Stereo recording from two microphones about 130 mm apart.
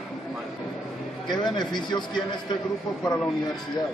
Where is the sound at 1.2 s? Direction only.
35° left (ahead or behind).